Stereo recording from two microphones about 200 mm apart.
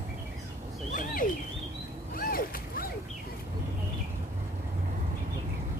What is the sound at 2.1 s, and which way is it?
Boat, 45° left (ahead or behind).